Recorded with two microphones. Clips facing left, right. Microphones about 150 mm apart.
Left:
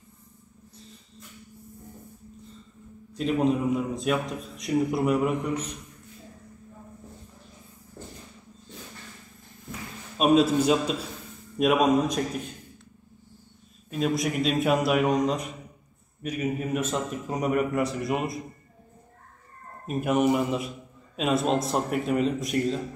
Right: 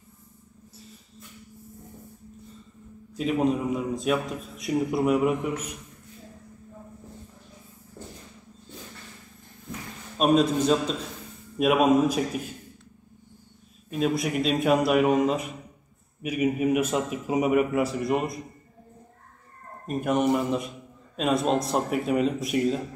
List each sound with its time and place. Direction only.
3.2 s a man's voice: 5° right (ahead or behind)
10.1 s a man's voice: 5° left (ahead or behind)
11.5 s a man's voice: centre (ahead or behind)
13.8 s a man's voice: centre (ahead or behind)
19.9 s a man's voice: 5° left (ahead or behind)